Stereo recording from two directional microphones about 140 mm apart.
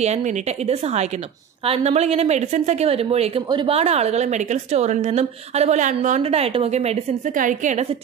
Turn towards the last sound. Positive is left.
turn(degrees=-60)  # may be behind; listen again after turning